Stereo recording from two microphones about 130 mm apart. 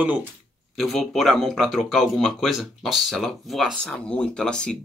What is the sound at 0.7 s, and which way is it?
Speech, centre (ahead or behind).